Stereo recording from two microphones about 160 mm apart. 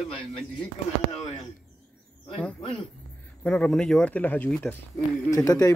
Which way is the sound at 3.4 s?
5° left (ahead or behind).